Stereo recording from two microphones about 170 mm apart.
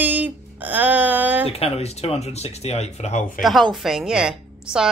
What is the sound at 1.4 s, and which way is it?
Speech, 35° left (ahead or behind).